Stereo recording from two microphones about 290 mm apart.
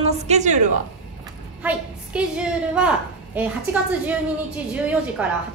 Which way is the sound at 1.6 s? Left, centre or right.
Centre.